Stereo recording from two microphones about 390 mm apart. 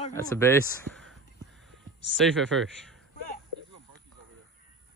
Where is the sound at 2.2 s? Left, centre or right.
Centre.